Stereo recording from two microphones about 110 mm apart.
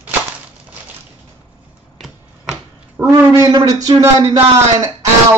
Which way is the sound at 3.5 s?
35° right (ahead or behind).